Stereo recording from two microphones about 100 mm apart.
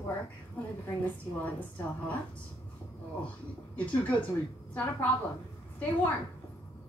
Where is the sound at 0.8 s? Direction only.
15° left (ahead or behind).